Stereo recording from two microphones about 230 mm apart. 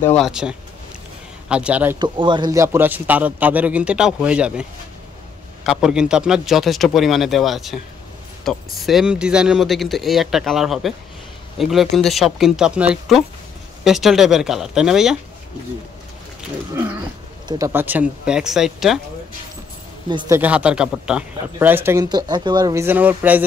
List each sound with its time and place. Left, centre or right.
0.1 s speech: centre
2.0 s a man's voice: centre
17.5 s speech: centre
20.1 s speech: centre
20.3 s a man's voice: centre